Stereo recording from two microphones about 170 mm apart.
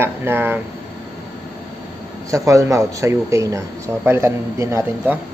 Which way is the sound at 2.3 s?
20° right (ahead or behind).